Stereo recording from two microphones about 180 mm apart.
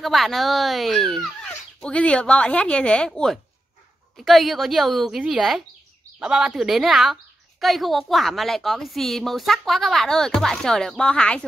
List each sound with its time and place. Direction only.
0.0 s a woman's voice: centre (ahead or behind)